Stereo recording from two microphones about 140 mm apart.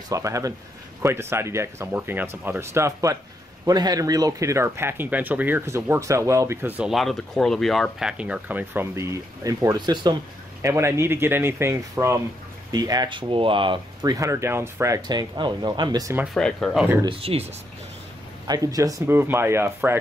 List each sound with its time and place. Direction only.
0.1 s speech: 25° right (ahead or behind)
6.9 s speech: centre (ahead or behind); by 10.1 s 30° right (ahead or behind)
10.6 s speech: 20° right (ahead or behind); by 14.1 s 35° right (ahead or behind)
14.1 s speech: 20° right (ahead or behind)
16.3 s speech: 5° left (ahead or behind)
17.0 s speech: 40° right (ahead or behind)
18.5 s speech: 25° right (ahead or behind)